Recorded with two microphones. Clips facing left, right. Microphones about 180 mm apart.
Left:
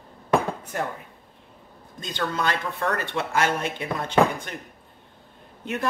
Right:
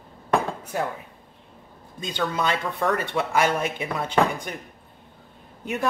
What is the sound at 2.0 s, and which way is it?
Speech, 15° right (ahead or behind).